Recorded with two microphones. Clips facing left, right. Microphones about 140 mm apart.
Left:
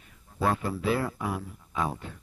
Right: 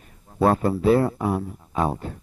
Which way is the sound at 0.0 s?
40° right (ahead or behind).